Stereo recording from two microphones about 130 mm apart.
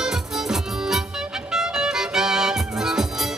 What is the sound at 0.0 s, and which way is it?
Music, 5° right (ahead or behind).